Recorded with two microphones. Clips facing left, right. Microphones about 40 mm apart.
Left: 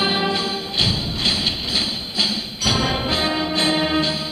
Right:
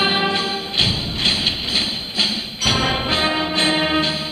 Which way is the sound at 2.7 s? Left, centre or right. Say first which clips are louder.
Right 1 dB; centre.